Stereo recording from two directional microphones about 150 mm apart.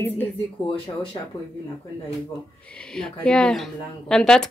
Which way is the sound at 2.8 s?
5° left (ahead or behind).